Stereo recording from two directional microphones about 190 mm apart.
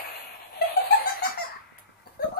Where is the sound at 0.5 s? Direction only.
55° left (ahead or behind).